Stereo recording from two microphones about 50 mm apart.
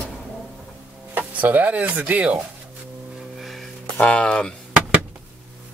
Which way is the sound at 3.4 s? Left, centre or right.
Centre.